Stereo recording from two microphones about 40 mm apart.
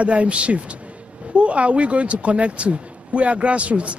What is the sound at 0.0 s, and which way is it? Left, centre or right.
Speech, right.